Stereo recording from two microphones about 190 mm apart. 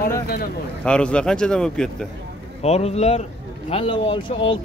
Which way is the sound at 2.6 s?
35° left (ahead or behind).